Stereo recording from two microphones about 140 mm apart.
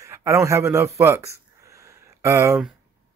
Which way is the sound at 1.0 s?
20° right (ahead or behind).